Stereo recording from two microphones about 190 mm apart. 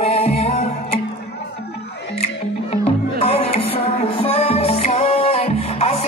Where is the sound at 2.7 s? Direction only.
30° left (ahead or behind).